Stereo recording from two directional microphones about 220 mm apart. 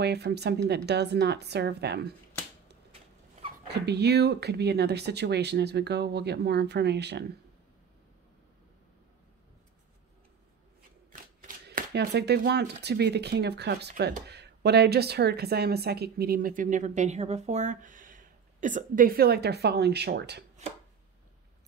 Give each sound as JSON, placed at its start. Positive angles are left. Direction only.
{"t": 0.0, "sound": "speech", "side_deg": -50}
{"t": 3.6, "sound": "speech", "side_deg": -50}
{"t": 11.4, "sound": "speech", "side_deg": -45}